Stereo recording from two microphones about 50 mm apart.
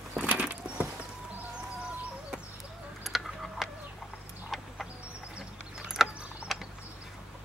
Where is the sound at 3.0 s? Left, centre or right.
Centre.